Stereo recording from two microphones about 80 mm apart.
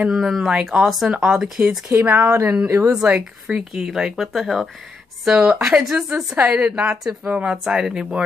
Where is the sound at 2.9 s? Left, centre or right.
Centre.